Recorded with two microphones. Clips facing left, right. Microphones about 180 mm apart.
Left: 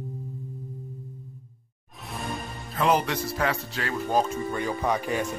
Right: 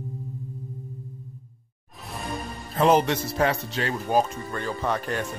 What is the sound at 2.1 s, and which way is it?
Music, centre (ahead or behind).